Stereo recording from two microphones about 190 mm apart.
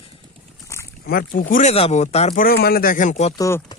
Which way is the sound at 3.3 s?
15° left (ahead or behind).